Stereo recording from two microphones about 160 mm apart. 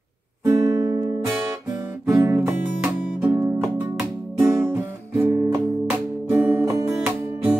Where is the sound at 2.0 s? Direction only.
15° right (ahead or behind).